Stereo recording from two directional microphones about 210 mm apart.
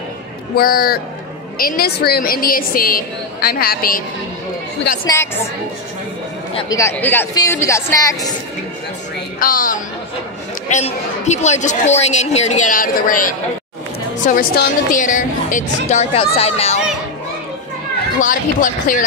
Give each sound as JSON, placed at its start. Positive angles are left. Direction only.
{"t": 0.6, "sound": "a woman's voice", "side_deg": 45}
{"t": 5.1, "sound": "a woman's voice", "side_deg": 10}
{"t": 6.5, "sound": "a woman's voice", "side_deg": 15}
{"t": 9.4, "sound": "speech", "side_deg": 40}
{"t": 18.2, "sound": "speech", "side_deg": 40}